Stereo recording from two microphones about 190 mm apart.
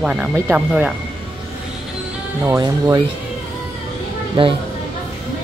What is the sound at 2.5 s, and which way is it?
Speech, 20° right (ahead or behind).